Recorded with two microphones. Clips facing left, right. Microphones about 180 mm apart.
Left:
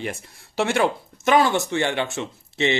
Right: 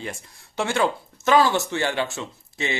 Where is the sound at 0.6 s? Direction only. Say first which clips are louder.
Left 2 dB; 25° left (ahead or behind).